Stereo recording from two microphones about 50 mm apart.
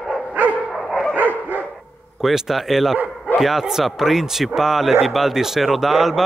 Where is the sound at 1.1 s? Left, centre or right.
Right.